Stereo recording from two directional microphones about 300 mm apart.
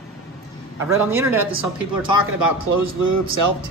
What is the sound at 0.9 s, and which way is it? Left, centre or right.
Speech, centre.